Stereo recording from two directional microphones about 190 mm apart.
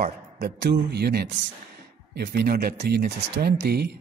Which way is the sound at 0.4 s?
60° right (ahead or behind).